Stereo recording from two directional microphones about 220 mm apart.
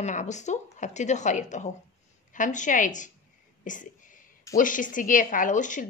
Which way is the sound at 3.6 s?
35° left (ahead or behind).